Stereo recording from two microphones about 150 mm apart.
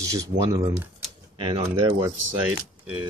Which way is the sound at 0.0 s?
20° right (ahead or behind).